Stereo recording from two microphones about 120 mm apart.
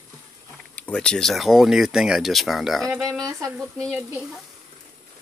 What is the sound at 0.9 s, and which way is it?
Speech, 5° left (ahead or behind).